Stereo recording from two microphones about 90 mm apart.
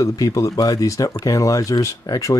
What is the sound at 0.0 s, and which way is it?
Speech, 40° left (ahead or behind).